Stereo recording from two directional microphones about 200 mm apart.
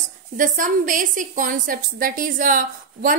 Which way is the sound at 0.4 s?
40° right (ahead or behind).